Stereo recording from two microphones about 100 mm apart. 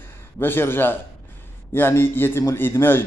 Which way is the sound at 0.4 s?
20° left (ahead or behind).